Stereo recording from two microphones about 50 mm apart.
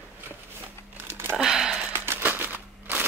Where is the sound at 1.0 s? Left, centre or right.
Right.